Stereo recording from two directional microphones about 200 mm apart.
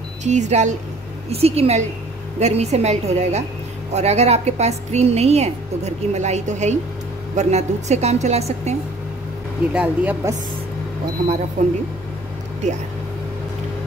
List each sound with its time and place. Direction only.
0.2 s a woman's voice: 35° right (ahead or behind)
9.8 s speech: 10° right (ahead or behind)
11.6 s a woman's voice: 40° right (ahead or behind)